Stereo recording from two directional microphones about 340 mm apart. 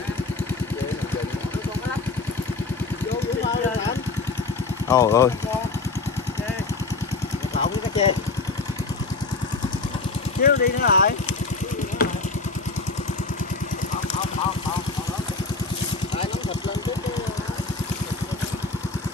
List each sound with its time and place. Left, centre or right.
4.8 s speech: centre
10.4 s speech: left
12.0 s vehicle: left